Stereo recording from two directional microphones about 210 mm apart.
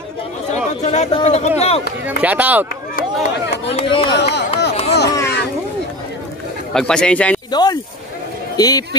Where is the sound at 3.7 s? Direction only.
25° left (ahead or behind).